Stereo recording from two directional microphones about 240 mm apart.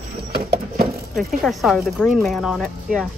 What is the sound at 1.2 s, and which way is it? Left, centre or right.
Speech, centre.